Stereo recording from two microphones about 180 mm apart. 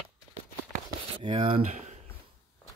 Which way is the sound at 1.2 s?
30° right (ahead or behind).